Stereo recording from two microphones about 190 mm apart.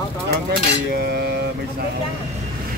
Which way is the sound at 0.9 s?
60° right (ahead or behind).